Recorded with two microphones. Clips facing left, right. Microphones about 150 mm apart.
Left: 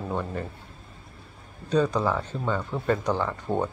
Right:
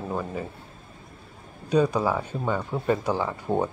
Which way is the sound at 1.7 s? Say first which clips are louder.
Right 1 dB; 10° right (ahead or behind).